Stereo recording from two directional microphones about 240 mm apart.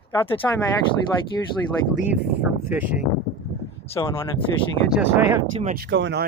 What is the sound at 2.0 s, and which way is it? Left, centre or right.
Speech, centre.